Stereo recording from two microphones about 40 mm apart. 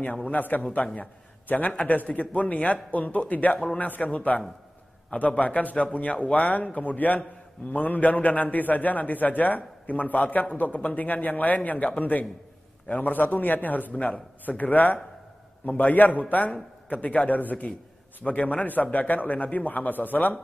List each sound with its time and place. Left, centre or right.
0.3 s a man's voice: left
2.0 s a man's voice: left
5.4 s a man's voice: left
13.9 s speech: left
14.4 s a man's voice: left